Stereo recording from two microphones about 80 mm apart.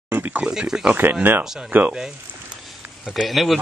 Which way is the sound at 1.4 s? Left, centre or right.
Centre.